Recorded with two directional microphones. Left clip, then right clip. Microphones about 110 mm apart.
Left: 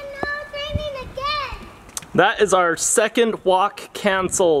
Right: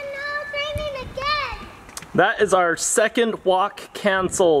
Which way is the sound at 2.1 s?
10° left (ahead or behind).